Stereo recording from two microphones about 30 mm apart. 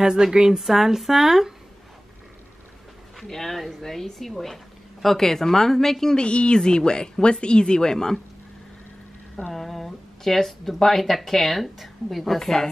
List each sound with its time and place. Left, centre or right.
0.0 s a woman's voice: right
0.6 s speech: centre
3.2 s speech: centre
6.1 s speech: left; by 8.2 s centre
9.5 s speech: centre
12.4 s speech: centre